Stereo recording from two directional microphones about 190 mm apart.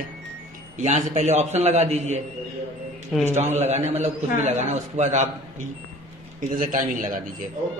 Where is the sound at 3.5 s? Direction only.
35° right (ahead or behind).